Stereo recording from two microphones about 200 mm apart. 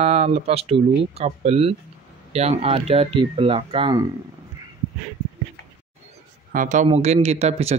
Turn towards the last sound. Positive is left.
turn(degrees=-30)  # may be behind; listen again after turning